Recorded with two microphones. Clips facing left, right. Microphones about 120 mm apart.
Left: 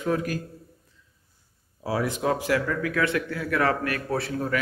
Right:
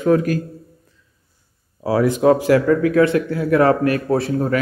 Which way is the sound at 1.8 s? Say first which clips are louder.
Right 9 dB; 80° right.